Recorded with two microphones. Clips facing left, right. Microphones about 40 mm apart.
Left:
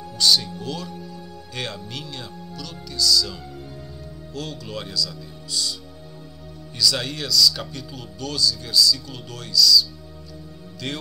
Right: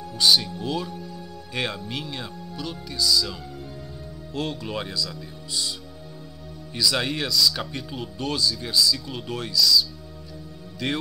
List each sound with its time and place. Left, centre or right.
0.2 s speech: centre
0.9 s music: centre
1.5 s speech: centre
6.8 s speech: centre